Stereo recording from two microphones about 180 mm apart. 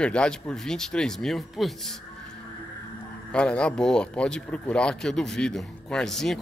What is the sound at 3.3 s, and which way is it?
Speech, 5° left (ahead or behind).